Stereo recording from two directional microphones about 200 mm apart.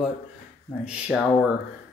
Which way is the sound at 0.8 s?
5° right (ahead or behind).